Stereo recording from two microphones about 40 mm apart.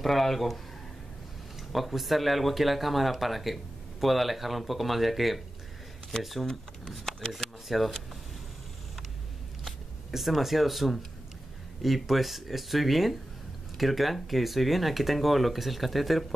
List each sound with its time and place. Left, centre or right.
0.0 s speech: centre
1.7 s speech: centre
6.4 s speech: centre
7.6 s speech: centre
9.7 s speech: centre